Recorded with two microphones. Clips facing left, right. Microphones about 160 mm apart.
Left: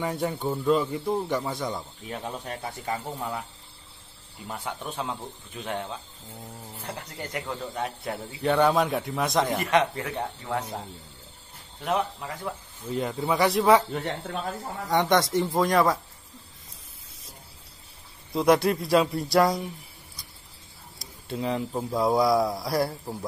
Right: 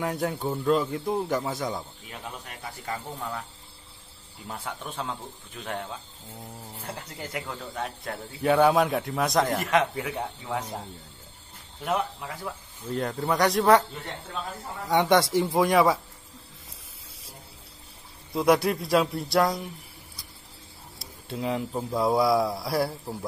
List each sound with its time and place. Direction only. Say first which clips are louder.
0.0 s a man's voice: even; centre (ahead or behind)
2.0 s speech: left 6 dB; 35° left (ahead or behind)
2.6 s speech: left 1 dB; 25° left (ahead or behind)
3.2 s speech: left 2 dB; 10° left (ahead or behind)
4.5 s a man's voice: left 2 dB; centre (ahead or behind)
7.0 s a man's voice: left 1 dB; centre (ahead or behind)
10.6 s a man's voice: left 1 dB; 10° left (ahead or behind)
14.9 s a man's voice: right 1 dB; 5° right (ahead or behind)
18.3 s a man's voice: left 1 dB; centre (ahead or behind)
21.0 s a man's voice: left 1 dB; centre (ahead or behind)